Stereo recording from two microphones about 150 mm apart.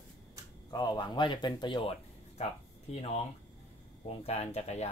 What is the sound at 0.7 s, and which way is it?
Speech, 25° left (ahead or behind).